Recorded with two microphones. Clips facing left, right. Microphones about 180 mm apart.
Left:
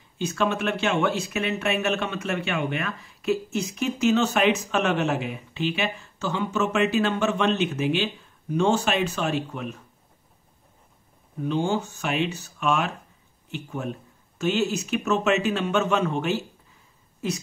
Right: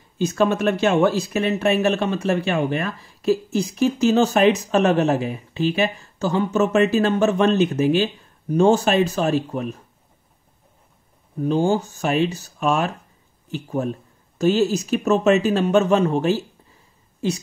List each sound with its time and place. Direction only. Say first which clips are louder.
0.2 s speech: right 6 dB; 40° right (ahead or behind)
11.4 s a woman's voice: right 5 dB; 40° right (ahead or behind)